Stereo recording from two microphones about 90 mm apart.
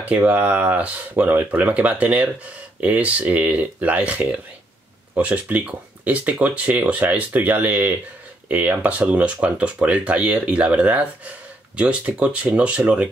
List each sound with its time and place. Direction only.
0.0 s speech: 15° right (ahead or behind)